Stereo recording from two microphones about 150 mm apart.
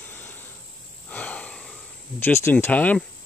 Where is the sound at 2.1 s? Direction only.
15° left (ahead or behind).